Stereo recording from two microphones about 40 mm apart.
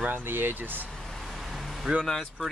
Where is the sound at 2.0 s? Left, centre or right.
Centre.